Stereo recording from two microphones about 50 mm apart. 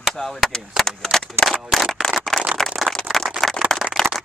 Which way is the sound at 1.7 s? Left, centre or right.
Centre.